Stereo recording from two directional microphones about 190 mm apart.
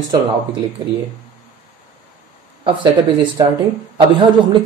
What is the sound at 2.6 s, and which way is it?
Speech, 25° right (ahead or behind).